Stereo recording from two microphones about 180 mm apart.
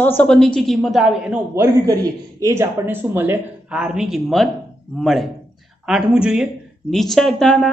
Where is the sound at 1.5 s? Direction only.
20° right (ahead or behind).